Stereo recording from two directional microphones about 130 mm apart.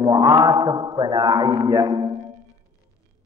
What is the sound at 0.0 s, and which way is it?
Mantra, 35° right (ahead or behind).